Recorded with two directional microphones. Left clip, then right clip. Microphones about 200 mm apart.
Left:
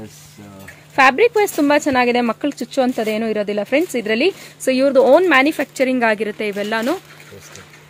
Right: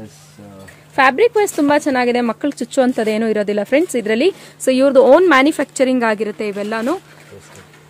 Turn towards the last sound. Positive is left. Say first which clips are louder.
# even
turn(degrees=-10)  # may be behind; listen again after turning